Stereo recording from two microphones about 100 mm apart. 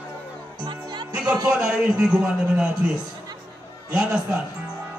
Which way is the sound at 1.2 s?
40° right (ahead or behind).